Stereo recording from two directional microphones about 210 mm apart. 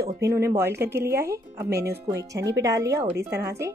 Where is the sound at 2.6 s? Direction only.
15° right (ahead or behind).